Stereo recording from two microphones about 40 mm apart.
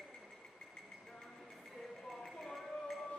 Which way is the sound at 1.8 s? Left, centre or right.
Centre.